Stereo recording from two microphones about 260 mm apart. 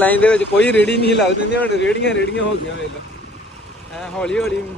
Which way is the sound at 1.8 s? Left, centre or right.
Left.